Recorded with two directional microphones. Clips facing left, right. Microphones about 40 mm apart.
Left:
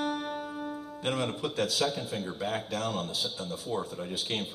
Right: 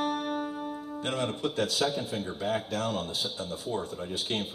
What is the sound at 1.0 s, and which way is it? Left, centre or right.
Music, centre.